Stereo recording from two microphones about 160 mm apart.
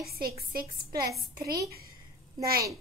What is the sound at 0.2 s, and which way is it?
Speech, 70° right (ahead or behind).